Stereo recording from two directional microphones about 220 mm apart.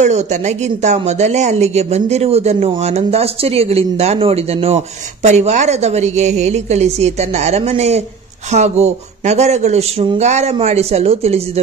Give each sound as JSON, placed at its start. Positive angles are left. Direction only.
{"t": 0.0, "sound": "speech", "side_deg": -30}